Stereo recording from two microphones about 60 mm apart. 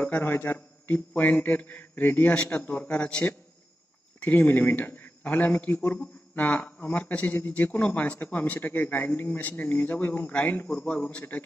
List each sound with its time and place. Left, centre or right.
0.0 s a man's voice: left